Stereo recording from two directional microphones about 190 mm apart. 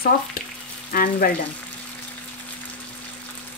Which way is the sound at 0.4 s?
50° left (ahead or behind).